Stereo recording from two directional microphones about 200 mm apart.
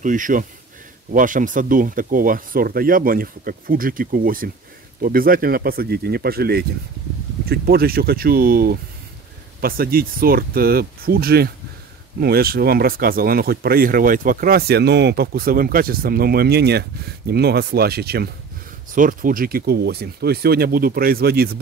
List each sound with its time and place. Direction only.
0.0 s speech: 40° right (ahead or behind)